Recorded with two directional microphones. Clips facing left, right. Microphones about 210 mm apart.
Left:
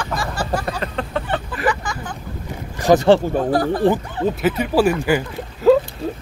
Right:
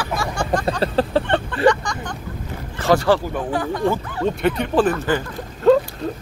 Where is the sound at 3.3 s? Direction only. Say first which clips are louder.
Left 5 dB; 40° left (ahead or behind).